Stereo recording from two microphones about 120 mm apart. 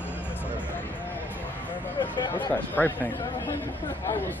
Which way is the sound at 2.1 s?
40° left (ahead or behind).